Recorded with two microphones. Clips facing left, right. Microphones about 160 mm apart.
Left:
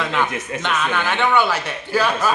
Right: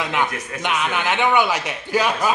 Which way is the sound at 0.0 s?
15° right (ahead or behind).